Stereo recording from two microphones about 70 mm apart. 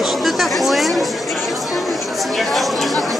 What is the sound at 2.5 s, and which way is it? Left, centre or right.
Speech, centre.